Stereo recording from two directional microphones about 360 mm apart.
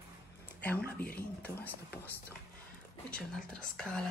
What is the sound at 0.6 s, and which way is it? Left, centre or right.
Speech, centre.